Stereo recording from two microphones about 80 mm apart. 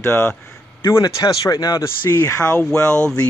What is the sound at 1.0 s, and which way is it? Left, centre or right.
Speech, left.